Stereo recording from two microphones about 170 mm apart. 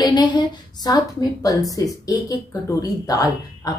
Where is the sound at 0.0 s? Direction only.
25° left (ahead or behind).